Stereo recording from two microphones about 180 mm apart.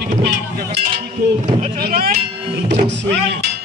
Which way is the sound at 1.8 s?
55° right (ahead or behind).